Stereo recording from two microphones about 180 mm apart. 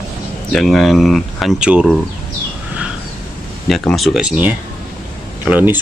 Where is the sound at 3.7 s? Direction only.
Centre (ahead or behind).